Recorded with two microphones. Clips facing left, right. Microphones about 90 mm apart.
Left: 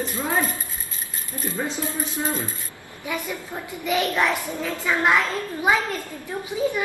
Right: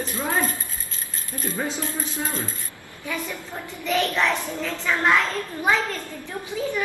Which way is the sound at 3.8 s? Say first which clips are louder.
Even; 10° left (ahead or behind).